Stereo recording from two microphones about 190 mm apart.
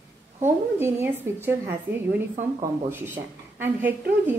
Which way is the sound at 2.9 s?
10° right (ahead or behind).